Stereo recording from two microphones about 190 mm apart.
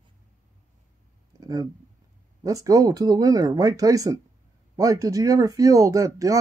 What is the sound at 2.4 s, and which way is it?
Speech, 15° right (ahead or behind).